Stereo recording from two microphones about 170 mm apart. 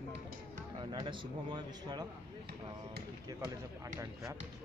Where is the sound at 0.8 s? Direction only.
30° right (ahead or behind).